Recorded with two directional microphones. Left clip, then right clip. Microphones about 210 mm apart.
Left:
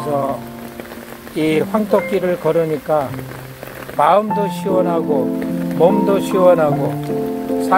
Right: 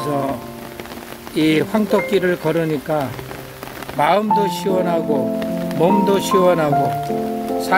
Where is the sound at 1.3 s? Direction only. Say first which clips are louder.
Even; 15° right (ahead or behind).